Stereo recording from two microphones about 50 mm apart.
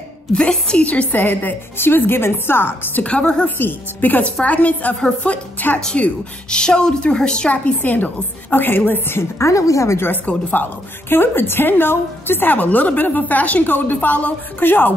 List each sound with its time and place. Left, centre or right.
0.3 s a woman's voice: centre
1.2 s a woman's voice: left
1.8 s a woman's voice: left
3.0 s a woman's voice: left
3.4 s a woman's voice: left
4.2 s a woman's voice: left
6.6 s a woman's voice: centre; by 9.2 s left
9.4 s a woman's voice: left
9.9 s a woman's voice: left